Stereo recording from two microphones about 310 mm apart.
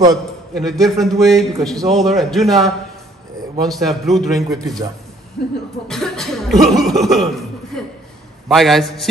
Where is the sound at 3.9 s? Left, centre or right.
Centre.